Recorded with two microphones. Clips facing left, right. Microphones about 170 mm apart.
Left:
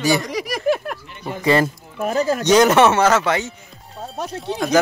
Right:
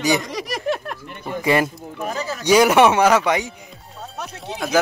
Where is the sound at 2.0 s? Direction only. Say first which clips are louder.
Left 7 dB; 50° left (ahead or behind).